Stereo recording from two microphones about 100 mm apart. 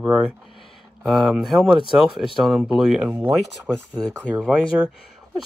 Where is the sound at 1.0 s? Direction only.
5° right (ahead or behind).